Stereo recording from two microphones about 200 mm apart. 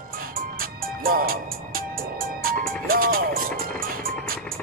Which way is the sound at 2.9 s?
45° right (ahead or behind).